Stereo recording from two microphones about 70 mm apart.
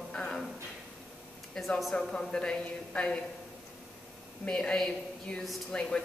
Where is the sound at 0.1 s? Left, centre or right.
Centre.